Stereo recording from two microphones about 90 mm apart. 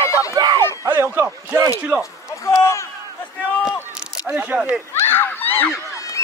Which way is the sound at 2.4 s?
35° left (ahead or behind).